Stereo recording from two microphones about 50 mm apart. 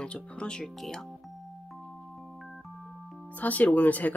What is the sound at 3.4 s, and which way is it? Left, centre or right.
Speech, left.